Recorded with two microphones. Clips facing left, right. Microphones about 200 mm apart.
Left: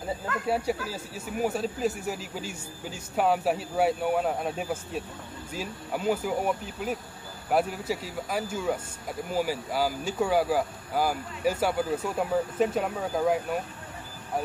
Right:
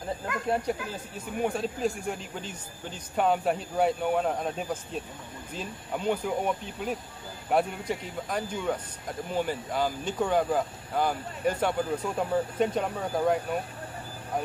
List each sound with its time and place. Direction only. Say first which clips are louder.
0.5 s a man's voice: left 1 dB; 5° left (ahead or behind)